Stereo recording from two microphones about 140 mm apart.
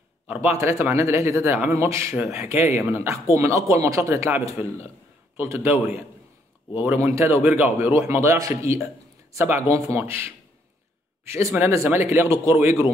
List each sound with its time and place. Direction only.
0.6 s a man's voice: 20° right (ahead or behind)